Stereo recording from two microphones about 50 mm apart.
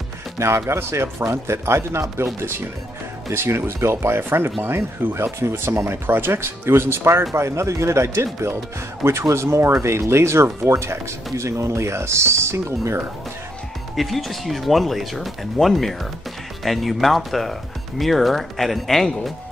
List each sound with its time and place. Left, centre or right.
0.4 s speech: right
3.3 s speech: right
5.1 s speech: right
5.7 s speech: right
7.3 s speech: right
11.3 s speech: right
13.9 s speech: centre